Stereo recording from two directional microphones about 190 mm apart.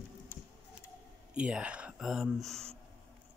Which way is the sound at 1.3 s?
5° right (ahead or behind).